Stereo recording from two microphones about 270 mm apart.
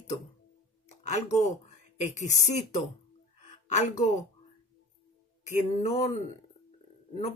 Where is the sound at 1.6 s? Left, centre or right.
Left.